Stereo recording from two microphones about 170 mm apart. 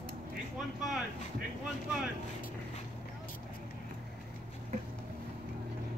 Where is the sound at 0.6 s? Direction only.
Centre (ahead or behind).